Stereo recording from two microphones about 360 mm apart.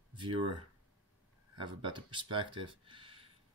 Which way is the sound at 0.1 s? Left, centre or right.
Centre.